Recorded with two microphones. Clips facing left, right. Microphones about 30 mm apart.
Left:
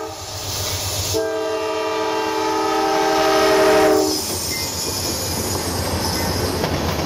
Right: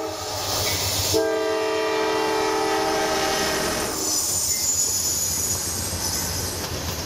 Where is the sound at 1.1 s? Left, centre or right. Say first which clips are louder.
Left 1 dB; centre; by 4.1 s left.